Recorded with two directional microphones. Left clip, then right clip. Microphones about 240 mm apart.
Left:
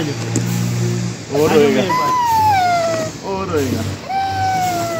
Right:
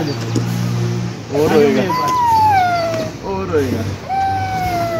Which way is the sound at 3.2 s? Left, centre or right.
Centre.